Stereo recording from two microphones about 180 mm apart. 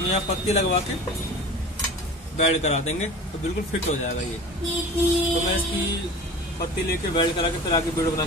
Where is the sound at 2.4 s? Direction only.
35° left (ahead or behind).